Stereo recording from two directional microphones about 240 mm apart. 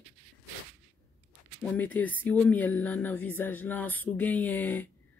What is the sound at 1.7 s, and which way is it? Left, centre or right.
Speech, centre.